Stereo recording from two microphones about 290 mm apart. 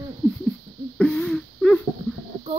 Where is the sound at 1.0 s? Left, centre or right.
Centre.